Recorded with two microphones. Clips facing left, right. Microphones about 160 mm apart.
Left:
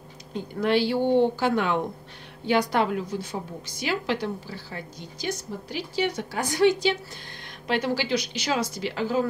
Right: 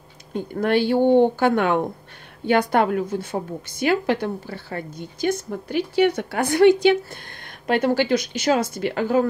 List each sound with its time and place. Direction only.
0.3 s a woman's voice: 55° right (ahead or behind)